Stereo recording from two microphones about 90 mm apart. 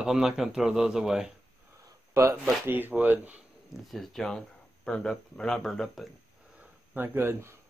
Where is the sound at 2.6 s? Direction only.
20° right (ahead or behind).